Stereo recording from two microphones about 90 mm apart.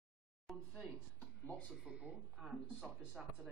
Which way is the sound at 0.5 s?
Centre (ahead or behind).